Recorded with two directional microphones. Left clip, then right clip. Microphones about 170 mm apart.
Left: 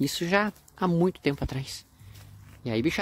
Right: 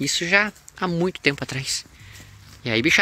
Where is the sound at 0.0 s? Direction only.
35° left (ahead or behind).